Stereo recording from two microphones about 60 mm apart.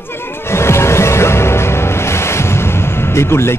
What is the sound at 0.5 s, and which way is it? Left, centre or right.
Music, left.